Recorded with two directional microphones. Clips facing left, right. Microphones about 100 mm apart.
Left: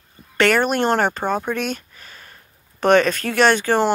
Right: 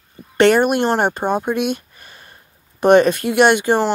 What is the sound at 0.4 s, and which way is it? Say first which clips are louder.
Speech: right 4 dB; 20° right (ahead or behind).